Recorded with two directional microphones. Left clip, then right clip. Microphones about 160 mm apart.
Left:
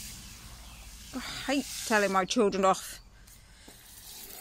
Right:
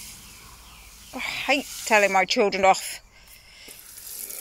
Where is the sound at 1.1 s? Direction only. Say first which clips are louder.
Right 9 dB; 15° left (ahead or behind).